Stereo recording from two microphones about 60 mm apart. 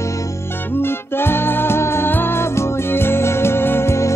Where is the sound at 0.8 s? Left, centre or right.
Left.